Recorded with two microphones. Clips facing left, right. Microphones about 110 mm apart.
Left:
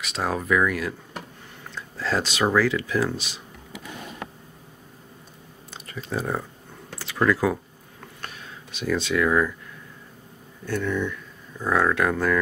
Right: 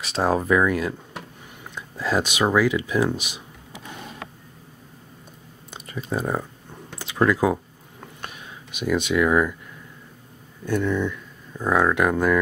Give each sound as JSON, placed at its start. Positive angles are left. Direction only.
{"t": 0.0, "sound": "speech", "side_deg": -35}
{"t": 1.8, "sound": "speech", "side_deg": -15}
{"t": 5.7, "sound": "speech", "side_deg": -15}
{"t": 6.9, "sound": "a sound", "side_deg": -20}
{"t": 10.6, "sound": "speech", "side_deg": -15}